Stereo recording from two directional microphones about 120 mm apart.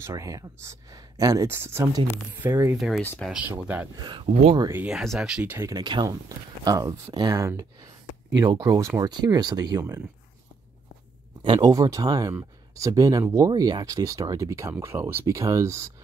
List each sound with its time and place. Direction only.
0.0 s speech: 25° right (ahead or behind)
3.0 s speech: 10° left (ahead or behind)
3.3 s speech: 15° right (ahead or behind)
3.9 s speech: 35° right (ahead or behind)
4.3 s speech: 60° right (ahead or behind)
4.7 s speech: 5° right (ahead or behind)
5.5 s speech: 20° right (ahead or behind)
5.8 s speech: 40° right (ahead or behind)
11.4 s speech: 40° right (ahead or behind)